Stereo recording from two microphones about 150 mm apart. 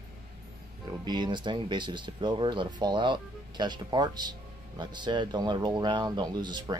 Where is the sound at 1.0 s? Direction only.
30° right (ahead or behind).